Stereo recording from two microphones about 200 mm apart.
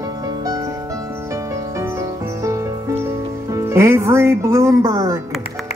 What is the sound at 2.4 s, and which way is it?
Music, 15° right (ahead or behind).